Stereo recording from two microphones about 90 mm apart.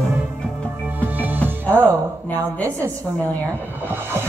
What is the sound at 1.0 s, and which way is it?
Music, 20° right (ahead or behind).